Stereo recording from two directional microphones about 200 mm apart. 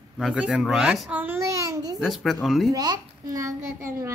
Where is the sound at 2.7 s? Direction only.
20° right (ahead or behind).